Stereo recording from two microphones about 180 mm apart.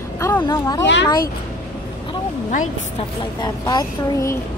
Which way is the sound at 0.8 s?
80° left.